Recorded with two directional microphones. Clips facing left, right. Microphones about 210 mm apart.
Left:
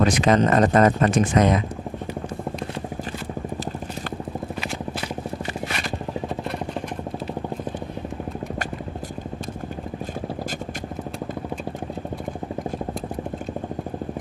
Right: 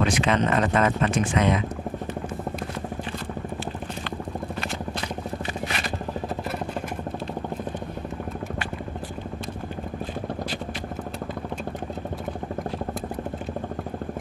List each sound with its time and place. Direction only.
0.0 s speech: 40° left (ahead or behind)